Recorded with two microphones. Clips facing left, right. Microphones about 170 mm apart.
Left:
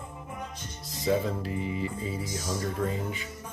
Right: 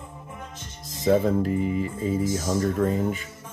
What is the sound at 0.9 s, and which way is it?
Speech, 45° right (ahead or behind).